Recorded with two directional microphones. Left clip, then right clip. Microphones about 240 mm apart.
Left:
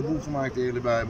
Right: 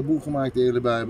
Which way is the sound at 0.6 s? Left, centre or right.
Centre.